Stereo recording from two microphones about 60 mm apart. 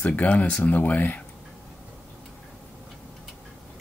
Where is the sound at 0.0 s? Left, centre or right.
Left.